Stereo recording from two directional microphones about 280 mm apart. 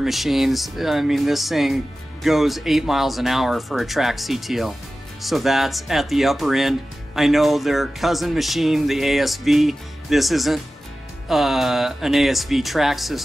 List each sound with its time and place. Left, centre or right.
0.0 s speech: centre